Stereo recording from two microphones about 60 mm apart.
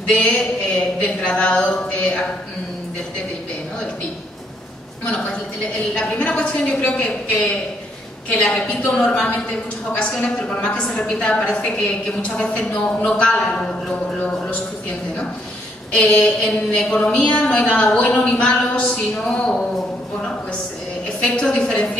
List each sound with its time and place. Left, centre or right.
0.1 s a woman's voice: centre
5.0 s a woman's voice: left
6.3 s a woman's voice: centre
8.4 s a woman's voice: centre
10.5 s a woman's voice: centre
16.4 s a woman's voice: centre
21.2 s a woman's voice: centre